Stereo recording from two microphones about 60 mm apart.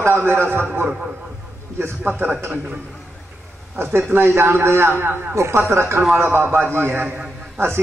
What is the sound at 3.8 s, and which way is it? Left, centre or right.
A man's voice, right.